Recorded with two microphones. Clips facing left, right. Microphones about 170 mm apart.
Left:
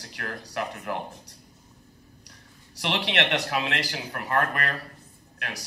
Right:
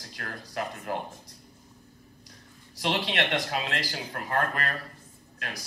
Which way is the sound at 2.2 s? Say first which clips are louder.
Right 1 dB; 75° left (ahead or behind).